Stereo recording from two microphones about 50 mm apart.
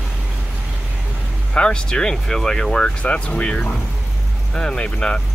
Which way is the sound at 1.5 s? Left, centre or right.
Left.